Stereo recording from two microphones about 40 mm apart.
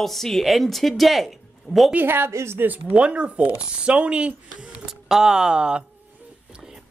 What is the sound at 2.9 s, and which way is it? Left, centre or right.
Speech, right.